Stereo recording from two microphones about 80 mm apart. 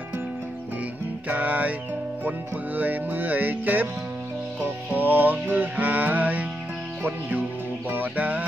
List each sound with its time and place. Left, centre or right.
1.3 s music: right
4.9 s music: right
7.0 s speech: centre
7.9 s music: right